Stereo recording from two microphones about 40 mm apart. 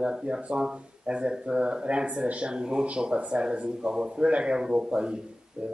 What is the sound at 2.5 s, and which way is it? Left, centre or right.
A man's voice, right.